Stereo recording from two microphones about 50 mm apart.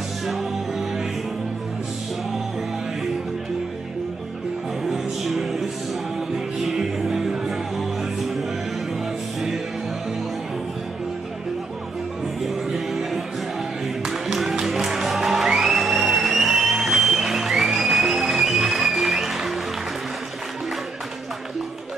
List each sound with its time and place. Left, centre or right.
0.3 s music: centre
4.8 s music: centre
12.4 s music: centre